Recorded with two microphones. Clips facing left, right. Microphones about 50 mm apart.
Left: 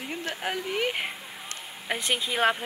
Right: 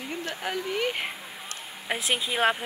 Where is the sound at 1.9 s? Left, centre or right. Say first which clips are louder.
Even; centre.